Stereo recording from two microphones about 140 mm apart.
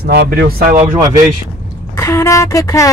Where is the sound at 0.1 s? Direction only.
90° right.